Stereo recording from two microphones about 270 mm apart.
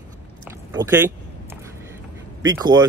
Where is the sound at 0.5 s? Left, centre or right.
Centre.